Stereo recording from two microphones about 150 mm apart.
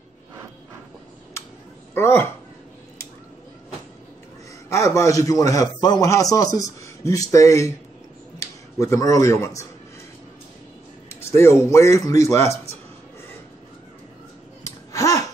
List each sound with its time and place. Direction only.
2.0 s speech: 15° left (ahead or behind)
4.6 s a man's voice: 20° left (ahead or behind)
11.1 s a man's voice: 15° left (ahead or behind)
14.6 s babbling: 20° left (ahead or behind)